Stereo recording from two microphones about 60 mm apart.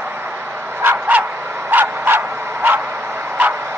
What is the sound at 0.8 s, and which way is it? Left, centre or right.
Bow-wow, right.